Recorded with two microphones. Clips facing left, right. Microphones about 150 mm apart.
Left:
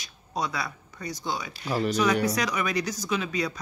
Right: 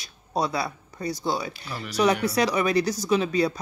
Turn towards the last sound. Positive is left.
turn(degrees=-30)  # may be behind; listen again after turning